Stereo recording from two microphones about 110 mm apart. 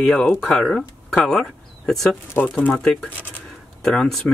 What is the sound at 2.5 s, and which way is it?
Speech, 15° left (ahead or behind).